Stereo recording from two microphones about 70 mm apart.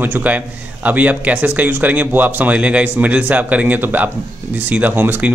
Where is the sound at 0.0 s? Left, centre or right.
Right.